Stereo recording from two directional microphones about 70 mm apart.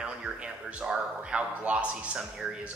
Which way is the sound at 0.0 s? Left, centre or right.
Centre.